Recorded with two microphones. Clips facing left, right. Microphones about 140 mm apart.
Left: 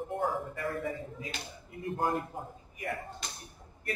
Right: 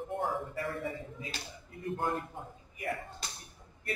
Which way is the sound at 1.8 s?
35° left (ahead or behind).